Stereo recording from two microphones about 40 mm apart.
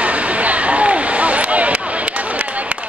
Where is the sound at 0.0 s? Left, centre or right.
Right.